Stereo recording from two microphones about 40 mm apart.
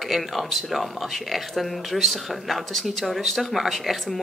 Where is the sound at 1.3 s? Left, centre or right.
Centre.